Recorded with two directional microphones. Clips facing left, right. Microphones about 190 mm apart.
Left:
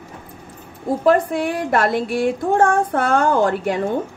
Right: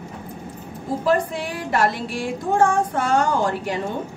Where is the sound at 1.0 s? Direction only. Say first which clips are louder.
Left 5 dB; 55° left (ahead or behind).